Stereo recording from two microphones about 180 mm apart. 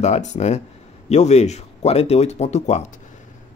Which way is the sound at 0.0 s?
40° left (ahead or behind).